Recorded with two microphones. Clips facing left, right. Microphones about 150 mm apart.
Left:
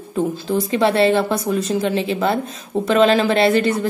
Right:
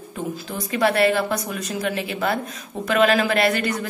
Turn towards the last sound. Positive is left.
turn(degrees=30)  # may be behind; listen again after turning